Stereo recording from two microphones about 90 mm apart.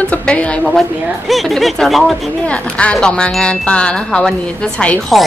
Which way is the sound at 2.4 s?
15° left (ahead or behind).